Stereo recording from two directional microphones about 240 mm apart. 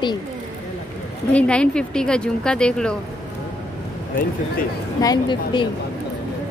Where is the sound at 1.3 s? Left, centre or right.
Centre.